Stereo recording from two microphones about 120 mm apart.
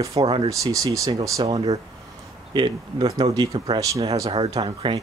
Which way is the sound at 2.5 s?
35° right (ahead or behind).